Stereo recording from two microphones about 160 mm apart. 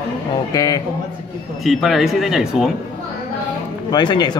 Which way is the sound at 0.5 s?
25° left (ahead or behind).